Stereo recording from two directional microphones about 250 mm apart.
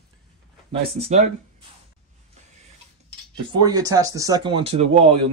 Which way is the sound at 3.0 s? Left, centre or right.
Centre.